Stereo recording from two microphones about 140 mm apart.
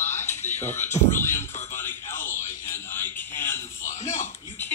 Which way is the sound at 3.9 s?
60° left (ahead or behind).